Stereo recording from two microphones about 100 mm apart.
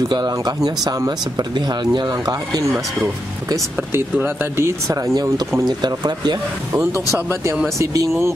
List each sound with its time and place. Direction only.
0.1 s speech: 45° right (ahead or behind)
3.9 s speech: 25° right (ahead or behind)